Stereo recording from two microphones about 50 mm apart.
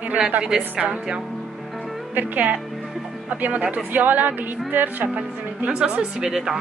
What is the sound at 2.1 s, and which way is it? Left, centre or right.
Speech, right.